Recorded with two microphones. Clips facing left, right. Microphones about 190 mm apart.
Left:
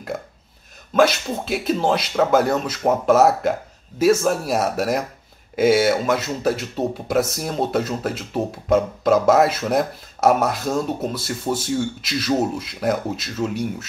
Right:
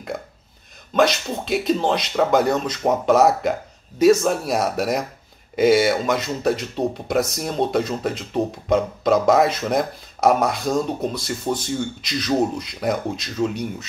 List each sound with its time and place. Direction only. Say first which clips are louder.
0.9 s speech: left 1 dB; 5° left (ahead or behind)